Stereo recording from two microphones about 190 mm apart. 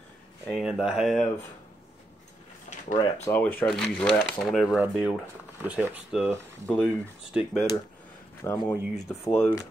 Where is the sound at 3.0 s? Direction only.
15° left (ahead or behind).